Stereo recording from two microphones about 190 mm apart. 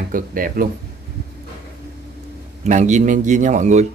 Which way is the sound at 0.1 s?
45° right (ahead or behind).